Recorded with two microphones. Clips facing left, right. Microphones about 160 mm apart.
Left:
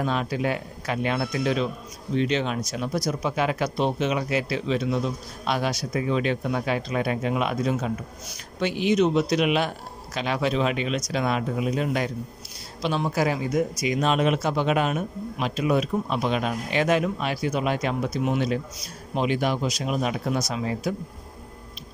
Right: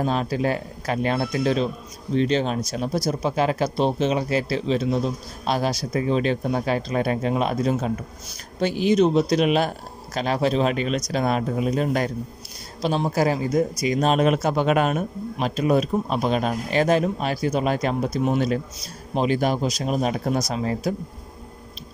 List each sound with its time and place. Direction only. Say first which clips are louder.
0.0 s speech: right 3 dB; 35° right (ahead or behind)